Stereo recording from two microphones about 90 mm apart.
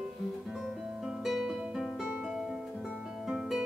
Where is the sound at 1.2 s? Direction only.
5° right (ahead or behind).